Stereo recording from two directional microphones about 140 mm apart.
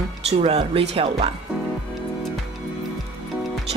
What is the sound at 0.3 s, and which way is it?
Speech, 45° right (ahead or behind).